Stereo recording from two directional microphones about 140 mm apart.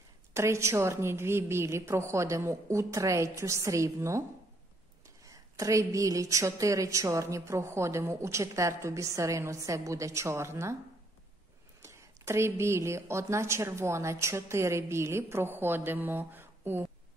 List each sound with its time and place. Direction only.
0.3 s a woman's voice: 20° right (ahead or behind)
5.2 s a woman's voice: 25° right (ahead or behind)
11.8 s a woman's voice: 20° right (ahead or behind)